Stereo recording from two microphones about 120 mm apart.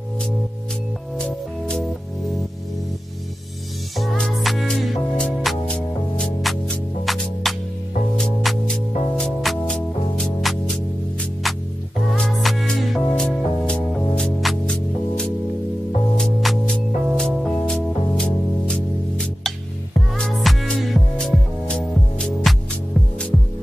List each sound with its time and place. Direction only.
1.1 s music: 5° left (ahead or behind)
3.9 s music: centre (ahead or behind)